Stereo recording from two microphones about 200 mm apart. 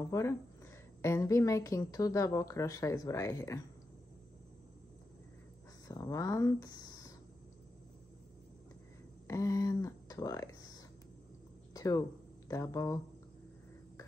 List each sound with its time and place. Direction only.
0.0 s a woman's voice: 15° left (ahead or behind)
5.9 s speech: 15° left (ahead or behind)
9.3 s speech: 15° left (ahead or behind)
11.7 s a sound: 15° left (ahead or behind)
12.4 s a woman's voice: 15° left (ahead or behind)